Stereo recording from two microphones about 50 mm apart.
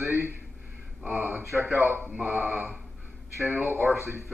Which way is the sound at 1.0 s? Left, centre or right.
Right.